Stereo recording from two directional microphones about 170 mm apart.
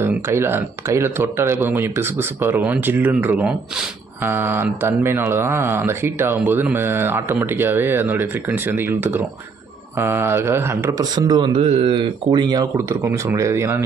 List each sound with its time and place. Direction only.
0.0 s speech: 15° right (ahead or behind)
11.5 s speech: 35° right (ahead or behind); by 13.8 s 15° right (ahead or behind)